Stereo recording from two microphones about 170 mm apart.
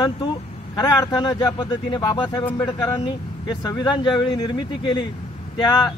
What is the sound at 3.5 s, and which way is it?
Speech, 25° left (ahead or behind).